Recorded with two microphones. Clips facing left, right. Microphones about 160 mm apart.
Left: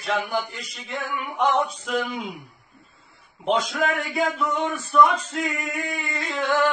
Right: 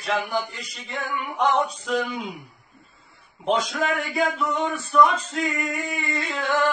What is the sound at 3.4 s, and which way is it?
Speech, centre (ahead or behind).